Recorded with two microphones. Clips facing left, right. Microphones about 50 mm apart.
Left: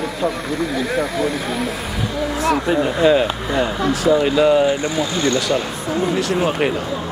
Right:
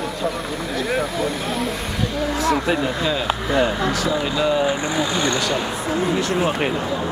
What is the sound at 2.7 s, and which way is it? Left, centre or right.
Speech, centre.